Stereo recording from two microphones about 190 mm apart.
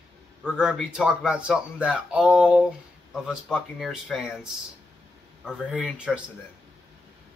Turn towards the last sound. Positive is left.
turn(degrees=-5)  # may be behind; listen again after turning